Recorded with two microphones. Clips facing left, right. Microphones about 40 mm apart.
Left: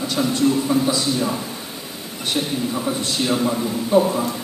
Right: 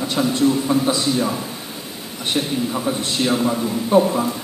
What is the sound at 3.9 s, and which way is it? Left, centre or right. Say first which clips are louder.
Speech: right 1 dB; right.